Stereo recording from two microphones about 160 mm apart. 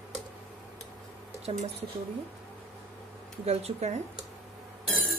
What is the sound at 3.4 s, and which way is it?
Speech, 40° right (ahead or behind).